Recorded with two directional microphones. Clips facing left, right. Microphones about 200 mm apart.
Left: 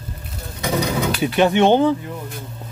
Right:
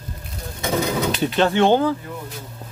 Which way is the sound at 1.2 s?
15° left (ahead or behind).